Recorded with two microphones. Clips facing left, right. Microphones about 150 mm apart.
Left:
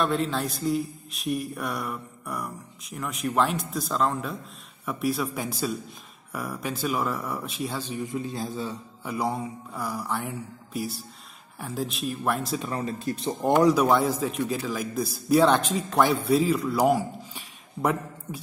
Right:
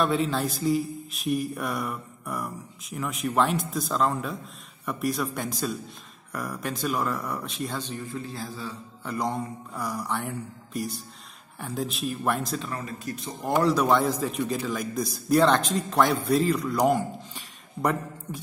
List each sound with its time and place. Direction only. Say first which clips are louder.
0.0 s a man's voice: right 1 dB; centre (ahead or behind); by 8.7 s 20° left (ahead or behind)
9.0 s a man's voice: left 1 dB; 5° left (ahead or behind)
12.7 s speech: left 4 dB; 30° left (ahead or behind)
13.6 s a man's voice: left 1 dB; 10° left (ahead or behind)